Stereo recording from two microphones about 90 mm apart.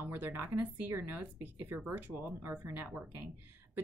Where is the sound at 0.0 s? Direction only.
25° right (ahead or behind).